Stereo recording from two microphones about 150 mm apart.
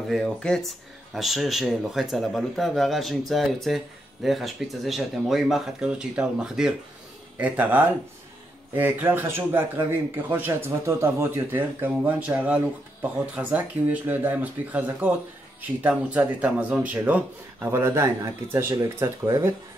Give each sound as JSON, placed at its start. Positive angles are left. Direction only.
{"t": 0.1, "sound": "speech", "side_deg": 5}